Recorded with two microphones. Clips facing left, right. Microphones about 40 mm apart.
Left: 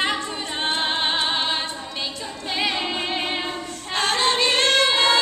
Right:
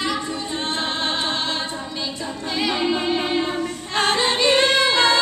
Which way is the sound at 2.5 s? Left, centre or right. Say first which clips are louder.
Right 3 dB; centre.